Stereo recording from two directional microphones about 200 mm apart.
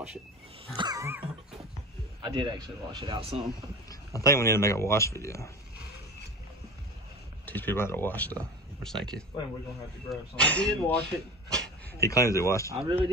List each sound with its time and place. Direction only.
0.7 s a sound: 20° right (ahead or behind)
2.2 s speech: 20° right (ahead or behind)
3.9 s speech: 15° left (ahead or behind)
7.4 s speech: 10° left (ahead or behind)
12.0 s speech: 15° left (ahead or behind)
12.8 s speech: 25° right (ahead or behind)